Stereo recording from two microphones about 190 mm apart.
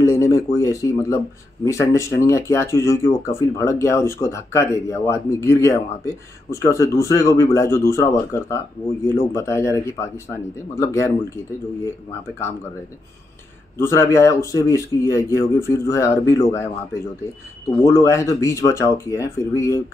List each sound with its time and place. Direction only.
0.0 s speech: 15° left (ahead or behind)
13.7 s speech: 15° left (ahead or behind)
17.8 s speech: 15° left (ahead or behind)